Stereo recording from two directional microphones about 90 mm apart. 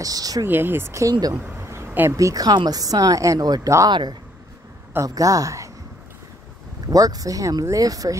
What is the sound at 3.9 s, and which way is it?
Speech, 55° right (ahead or behind).